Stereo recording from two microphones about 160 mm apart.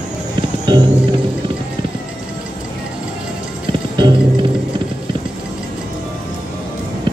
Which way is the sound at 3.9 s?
30° right (ahead or behind).